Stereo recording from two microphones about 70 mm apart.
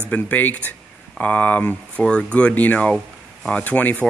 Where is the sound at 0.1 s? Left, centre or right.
Left.